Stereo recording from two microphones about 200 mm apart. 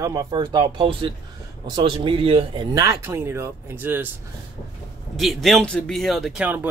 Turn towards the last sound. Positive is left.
turn(degrees=-10)  # may be behind; listen again after turning